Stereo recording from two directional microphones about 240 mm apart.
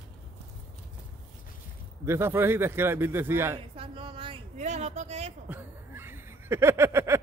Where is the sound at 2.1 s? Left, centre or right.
Centre.